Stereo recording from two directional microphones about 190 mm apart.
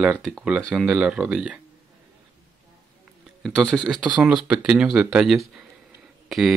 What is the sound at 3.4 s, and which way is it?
Speech, 5° left (ahead or behind).